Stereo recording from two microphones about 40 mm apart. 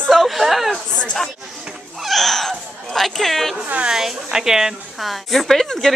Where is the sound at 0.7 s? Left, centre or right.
Left.